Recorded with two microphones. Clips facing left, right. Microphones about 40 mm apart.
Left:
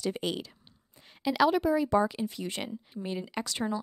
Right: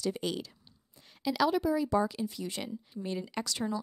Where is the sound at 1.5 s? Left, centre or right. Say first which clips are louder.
Left 3 dB; left.